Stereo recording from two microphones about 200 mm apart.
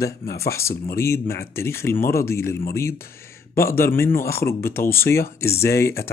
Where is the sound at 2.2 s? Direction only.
15° left (ahead or behind).